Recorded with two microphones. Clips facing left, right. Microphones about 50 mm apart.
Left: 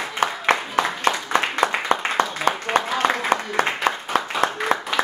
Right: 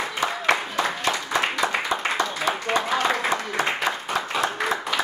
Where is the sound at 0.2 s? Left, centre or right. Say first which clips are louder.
Left 3 dB; left.